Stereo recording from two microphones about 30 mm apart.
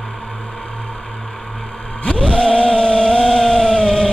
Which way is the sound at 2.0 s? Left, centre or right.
Left.